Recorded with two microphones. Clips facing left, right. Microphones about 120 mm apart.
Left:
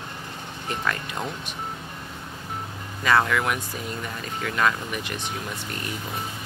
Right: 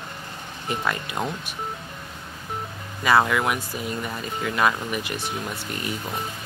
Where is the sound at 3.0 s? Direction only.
10° right (ahead or behind).